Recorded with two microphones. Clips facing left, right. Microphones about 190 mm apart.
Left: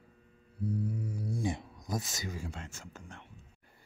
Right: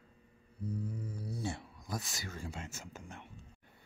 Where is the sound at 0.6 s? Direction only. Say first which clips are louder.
Left 5 dB; 40° left (ahead or behind).